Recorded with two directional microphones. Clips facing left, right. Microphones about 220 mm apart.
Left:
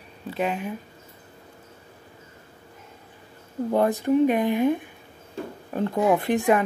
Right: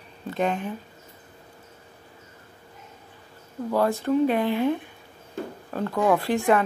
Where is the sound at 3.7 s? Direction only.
20° left (ahead or behind).